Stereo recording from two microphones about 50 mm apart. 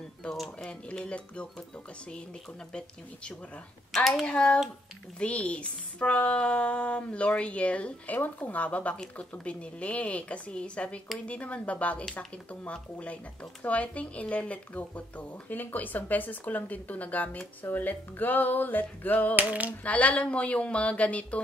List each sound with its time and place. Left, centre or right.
0.3 s speech: centre
0.7 s speech: left
5.2 s speech: left
12.0 s speech: centre
12.7 s speech: left
19.3 s a sound: right
19.8 s speech: left